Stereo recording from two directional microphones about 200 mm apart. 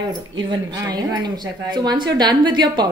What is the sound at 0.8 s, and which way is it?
A woman's voice, 20° right (ahead or behind).